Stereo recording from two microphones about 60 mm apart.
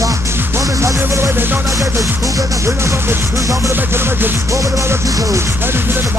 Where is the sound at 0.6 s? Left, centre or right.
Right.